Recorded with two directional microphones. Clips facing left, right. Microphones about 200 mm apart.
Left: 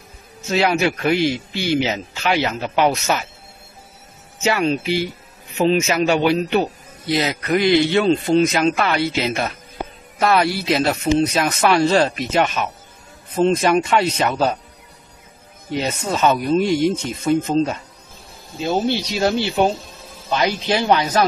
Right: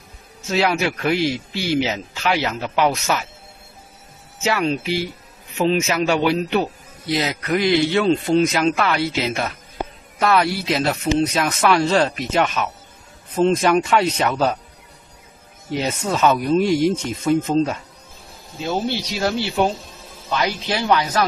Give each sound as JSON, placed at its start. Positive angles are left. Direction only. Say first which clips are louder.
{"t": 0.5, "sound": "speech", "louder": "left 2 dB", "side_deg": 0}
{"t": 2.6, "sound": "speech", "louder": "left 1 dB", "side_deg": 25}
{"t": 4.4, "sound": "speech", "louder": "left 2 dB", "side_deg": 0}
{"t": 10.4, "sound": "speech", "louder": "left 2 dB", "side_deg": 0}
{"t": 15.7, "sound": "speech", "louder": "even", "side_deg": 0}
{"t": 18.7, "sound": "speech", "louder": "left 3 dB", "side_deg": 20}